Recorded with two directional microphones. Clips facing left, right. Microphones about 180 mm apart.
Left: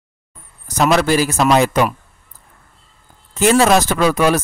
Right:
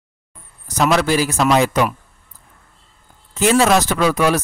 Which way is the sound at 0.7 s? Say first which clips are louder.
Left 2 dB; 45° left (ahead or behind).